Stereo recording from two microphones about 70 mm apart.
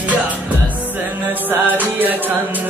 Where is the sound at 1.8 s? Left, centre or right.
Right.